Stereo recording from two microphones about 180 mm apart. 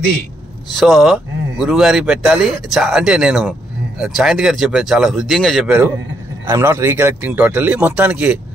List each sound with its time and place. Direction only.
0.7 s speech: centre (ahead or behind)